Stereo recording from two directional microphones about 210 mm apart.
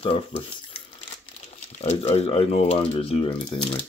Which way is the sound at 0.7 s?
30° left (ahead or behind).